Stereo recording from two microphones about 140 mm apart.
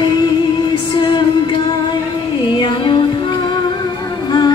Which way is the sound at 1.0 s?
35° left (ahead or behind).